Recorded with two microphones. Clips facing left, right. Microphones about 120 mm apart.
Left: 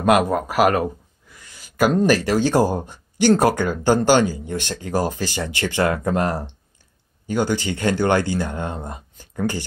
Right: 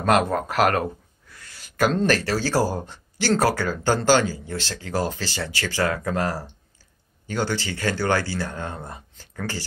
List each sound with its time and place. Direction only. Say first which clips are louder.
0.0 s speech: left 3 dB; 10° left (ahead or behind)